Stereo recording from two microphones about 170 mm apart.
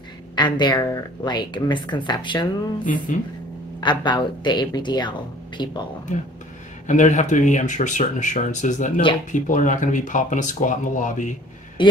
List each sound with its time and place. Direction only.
0.4 s a woman's voice: 25° left (ahead or behind)
2.8 s speech: 50° left (ahead or behind)
3.8 s a woman's voice: 25° left (ahead or behind)
6.9 s speech: 45° left (ahead or behind)
11.8 s speech: 30° left (ahead or behind)